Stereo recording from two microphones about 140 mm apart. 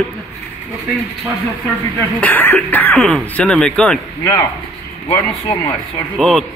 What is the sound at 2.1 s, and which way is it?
Speech, 10° left (ahead or behind).